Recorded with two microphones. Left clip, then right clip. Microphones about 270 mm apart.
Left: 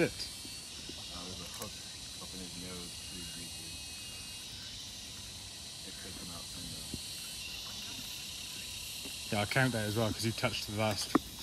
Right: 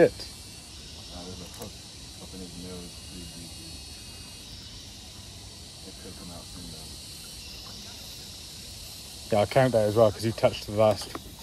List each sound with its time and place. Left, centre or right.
9.3 s speech: centre
9.7 s speech: centre
10.0 s speech: centre